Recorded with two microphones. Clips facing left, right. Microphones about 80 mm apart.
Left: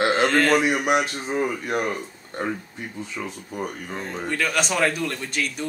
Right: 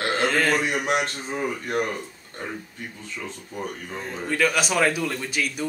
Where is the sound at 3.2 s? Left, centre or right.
Left.